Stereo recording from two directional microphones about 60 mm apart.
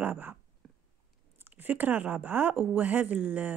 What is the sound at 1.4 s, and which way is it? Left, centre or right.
Speech, right.